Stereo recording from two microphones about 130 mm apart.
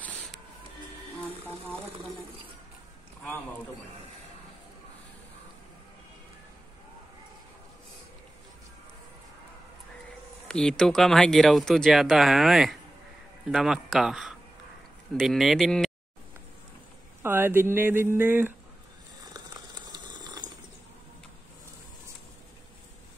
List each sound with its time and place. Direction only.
10.5 s speech: 5° left (ahead or behind)
17.2 s speech: 15° right (ahead or behind)
19.3 s boiling: 30° right (ahead or behind)